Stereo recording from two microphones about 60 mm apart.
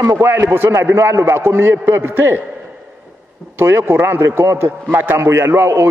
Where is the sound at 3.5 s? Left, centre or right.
Right.